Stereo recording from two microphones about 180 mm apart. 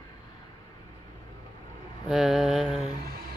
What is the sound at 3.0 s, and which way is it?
Speech, 55° right (ahead or behind).